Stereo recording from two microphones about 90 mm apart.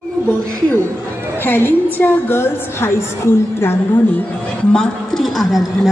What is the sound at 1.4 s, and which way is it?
A woman's voice, 25° left (ahead or behind).